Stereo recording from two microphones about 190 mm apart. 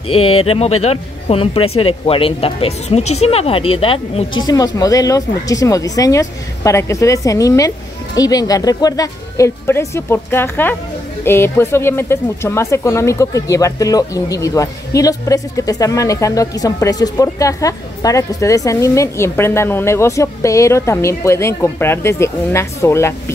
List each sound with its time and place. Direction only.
0.1 s speech: 30° left (ahead or behind); by 23.3 s 15° left (ahead or behind)